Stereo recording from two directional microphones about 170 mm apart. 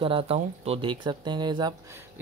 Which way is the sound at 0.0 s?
35° right (ahead or behind).